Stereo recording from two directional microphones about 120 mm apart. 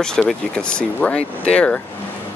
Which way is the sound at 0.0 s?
5° left (ahead or behind).